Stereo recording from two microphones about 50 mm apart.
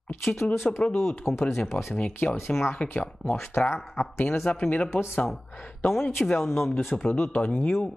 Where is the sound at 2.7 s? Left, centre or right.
Left.